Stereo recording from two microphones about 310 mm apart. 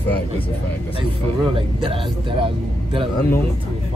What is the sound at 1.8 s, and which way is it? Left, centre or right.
Speech, centre.